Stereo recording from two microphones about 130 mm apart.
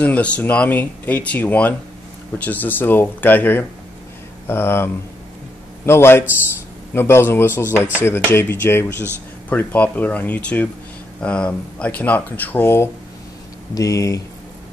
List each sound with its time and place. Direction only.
0.0 s a man's voice: 10° left (ahead or behind); by 14.2 s 25° left (ahead or behind)